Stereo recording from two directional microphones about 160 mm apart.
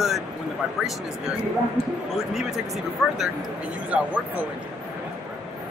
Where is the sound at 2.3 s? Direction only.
Centre (ahead or behind).